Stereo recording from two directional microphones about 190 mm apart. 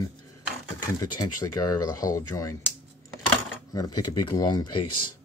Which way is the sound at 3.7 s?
20° left (ahead or behind).